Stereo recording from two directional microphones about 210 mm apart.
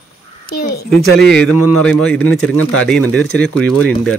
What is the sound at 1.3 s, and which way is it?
Speech, 5° left (ahead or behind).